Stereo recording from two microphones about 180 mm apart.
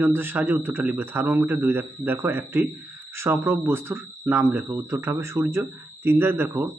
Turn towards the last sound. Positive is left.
turn(degrees=-15)  # may be behind; listen again after turning